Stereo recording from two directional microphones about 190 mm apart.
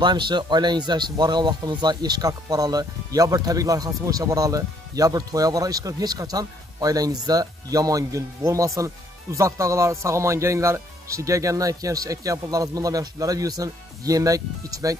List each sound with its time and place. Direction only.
0.0 s speech: 25° right (ahead or behind)